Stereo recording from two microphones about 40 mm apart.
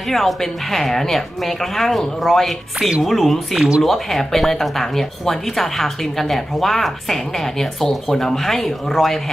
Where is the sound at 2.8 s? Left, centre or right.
Centre.